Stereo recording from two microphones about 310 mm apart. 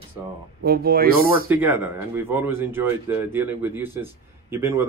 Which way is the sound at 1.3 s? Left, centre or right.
Centre.